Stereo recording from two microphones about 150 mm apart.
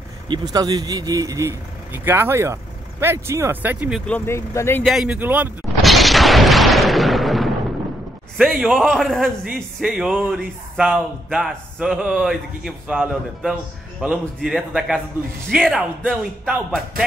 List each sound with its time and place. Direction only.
0.3 s speech: 25° right (ahead or behind); by 4.0 s 10° right (ahead or behind)
4.3 s speech: 20° left (ahead or behind)
4.8 s speech: 5° right (ahead or behind)
5.8 s artillery fire: centre (ahead or behind)
8.4 s speech: 5° right (ahead or behind)